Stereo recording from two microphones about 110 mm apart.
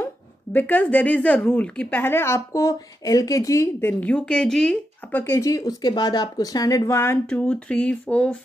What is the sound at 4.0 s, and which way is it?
Speech, 10° left (ahead or behind).